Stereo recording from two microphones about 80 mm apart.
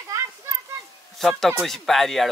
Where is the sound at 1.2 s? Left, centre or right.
Centre.